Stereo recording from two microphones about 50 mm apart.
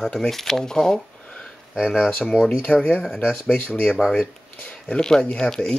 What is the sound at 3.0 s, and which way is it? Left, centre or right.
Speech, centre.